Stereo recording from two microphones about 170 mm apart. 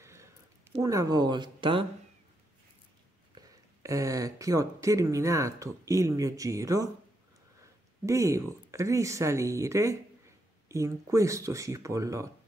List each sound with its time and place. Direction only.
0.0 s a sound: 15° right (ahead or behind)
0.8 s speech: 20° right (ahead or behind)
3.3 s speech: 20° right (ahead or behind)
8.0 s speech: 15° right (ahead or behind)